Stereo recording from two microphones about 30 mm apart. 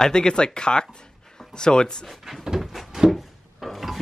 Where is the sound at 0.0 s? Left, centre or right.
Left.